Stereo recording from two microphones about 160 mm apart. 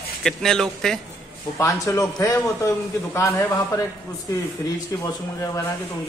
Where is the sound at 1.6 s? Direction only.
20° left (ahead or behind).